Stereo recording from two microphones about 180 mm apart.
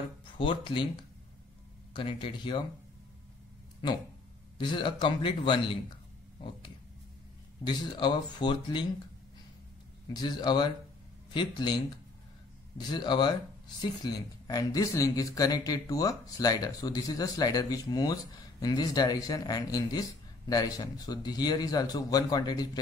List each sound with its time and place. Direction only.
0.4 s speech: 30° left (ahead or behind)
4.6 s speech: 25° left (ahead or behind)
7.6 s speech: 25° left (ahead or behind)
10.1 s speech: 25° left (ahead or behind)